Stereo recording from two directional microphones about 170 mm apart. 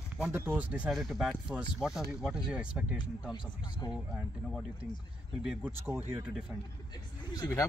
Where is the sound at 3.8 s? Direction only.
25° left (ahead or behind).